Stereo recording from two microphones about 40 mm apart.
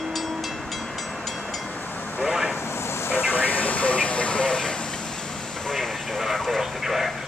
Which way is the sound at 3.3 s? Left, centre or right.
Left.